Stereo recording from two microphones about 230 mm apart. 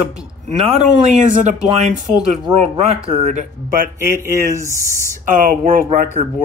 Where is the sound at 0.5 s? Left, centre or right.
Right.